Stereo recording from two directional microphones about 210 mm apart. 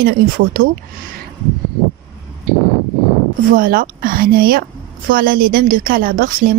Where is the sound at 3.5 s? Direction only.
40° right (ahead or behind).